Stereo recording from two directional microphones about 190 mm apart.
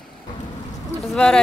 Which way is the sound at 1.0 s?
Centre (ahead or behind).